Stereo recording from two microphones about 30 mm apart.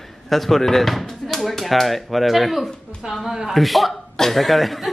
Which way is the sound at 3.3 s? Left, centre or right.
Centre.